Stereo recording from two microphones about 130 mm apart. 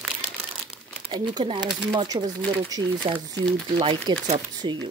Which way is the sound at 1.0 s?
40° right (ahead or behind).